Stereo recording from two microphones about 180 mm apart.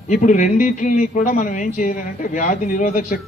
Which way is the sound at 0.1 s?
45° left (ahead or behind).